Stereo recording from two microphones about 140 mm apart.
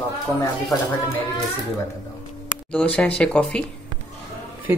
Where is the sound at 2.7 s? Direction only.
10° left (ahead or behind).